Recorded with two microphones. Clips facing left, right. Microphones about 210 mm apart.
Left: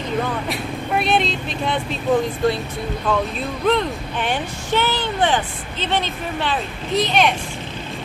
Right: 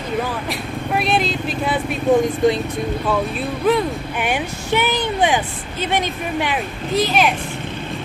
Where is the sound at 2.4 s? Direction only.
15° right (ahead or behind).